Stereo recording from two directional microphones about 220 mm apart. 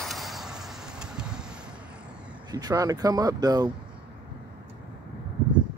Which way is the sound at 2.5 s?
15° right (ahead or behind).